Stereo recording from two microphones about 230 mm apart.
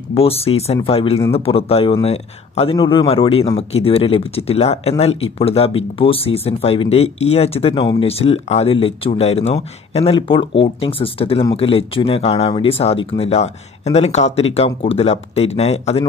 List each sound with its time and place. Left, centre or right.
0.1 s speech: left